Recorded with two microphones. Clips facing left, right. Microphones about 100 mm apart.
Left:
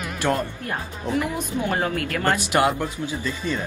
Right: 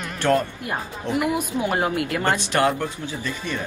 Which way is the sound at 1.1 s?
15° right (ahead or behind).